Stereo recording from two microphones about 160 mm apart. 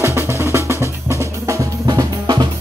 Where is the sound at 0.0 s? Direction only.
15° right (ahead or behind).